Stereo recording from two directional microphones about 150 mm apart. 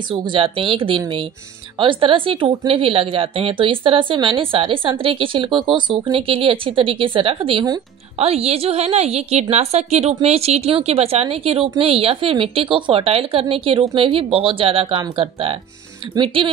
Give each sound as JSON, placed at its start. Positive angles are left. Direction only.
{"t": 0.1, "sound": "a woman's voice", "side_deg": -35}